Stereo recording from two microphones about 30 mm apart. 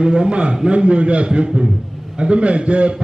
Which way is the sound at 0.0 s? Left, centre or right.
Right.